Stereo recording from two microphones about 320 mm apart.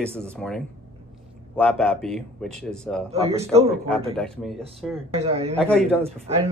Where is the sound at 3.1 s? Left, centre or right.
Centre.